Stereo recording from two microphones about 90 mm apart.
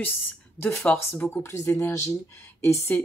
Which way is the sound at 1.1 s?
15° left (ahead or behind).